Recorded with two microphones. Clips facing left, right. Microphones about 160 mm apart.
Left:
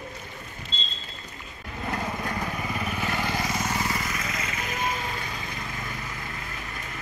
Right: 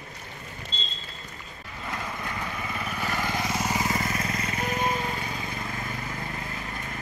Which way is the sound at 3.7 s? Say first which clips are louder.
Right 2 dB; 25° right (ahead or behind).